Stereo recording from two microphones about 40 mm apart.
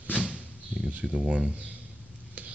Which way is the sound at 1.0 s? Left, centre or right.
Right.